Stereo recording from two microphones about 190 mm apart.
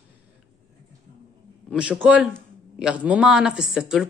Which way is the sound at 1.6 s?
5° right (ahead or behind).